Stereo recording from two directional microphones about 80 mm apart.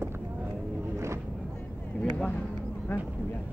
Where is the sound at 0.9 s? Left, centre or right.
Right.